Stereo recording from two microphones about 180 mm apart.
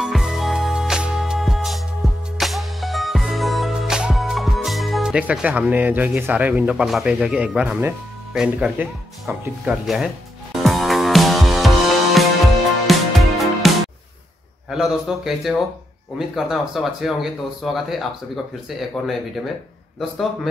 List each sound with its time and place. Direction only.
0.0 s music: centre (ahead or behind)
14.7 s speech: centre (ahead or behind)